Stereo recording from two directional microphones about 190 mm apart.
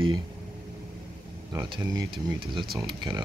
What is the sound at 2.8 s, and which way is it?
Speech, 25° right (ahead or behind).